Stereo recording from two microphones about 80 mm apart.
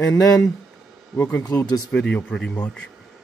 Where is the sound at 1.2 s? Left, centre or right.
Left.